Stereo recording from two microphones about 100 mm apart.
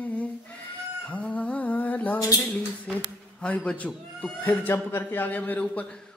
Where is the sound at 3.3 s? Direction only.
10° left (ahead or behind).